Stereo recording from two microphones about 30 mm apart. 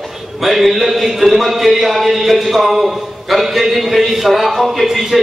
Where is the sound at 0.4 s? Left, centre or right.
Centre.